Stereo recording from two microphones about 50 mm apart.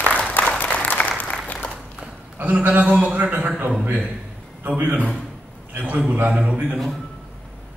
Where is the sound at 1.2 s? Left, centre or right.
Centre.